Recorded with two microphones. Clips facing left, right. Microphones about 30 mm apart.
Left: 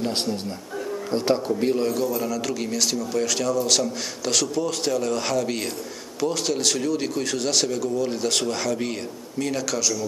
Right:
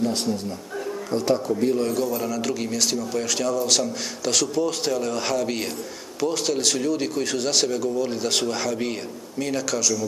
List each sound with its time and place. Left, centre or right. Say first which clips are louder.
0.0 s a man's voice: right 1 dB; left
1.1 s speech: even; left
1.8 s speech: even; centre